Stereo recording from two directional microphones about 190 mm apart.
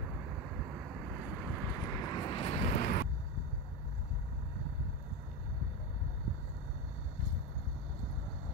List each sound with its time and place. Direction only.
1.1 s vehicle: centre (ahead or behind)
1.7 s vehicle: 15° left (ahead or behind); by 3.1 s 45° left (ahead or behind)